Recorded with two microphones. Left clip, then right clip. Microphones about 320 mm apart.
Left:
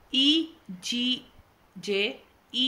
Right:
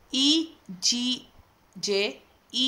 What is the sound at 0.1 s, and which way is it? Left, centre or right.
A woman's voice, centre.